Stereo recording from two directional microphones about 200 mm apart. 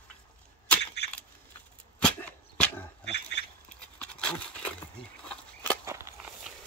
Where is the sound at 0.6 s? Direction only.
5° left (ahead or behind).